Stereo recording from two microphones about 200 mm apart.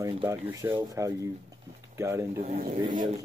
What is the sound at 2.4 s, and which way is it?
Speech, 35° right (ahead or behind).